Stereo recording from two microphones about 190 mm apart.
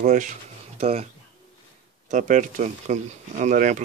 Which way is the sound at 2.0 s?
45° right (ahead or behind).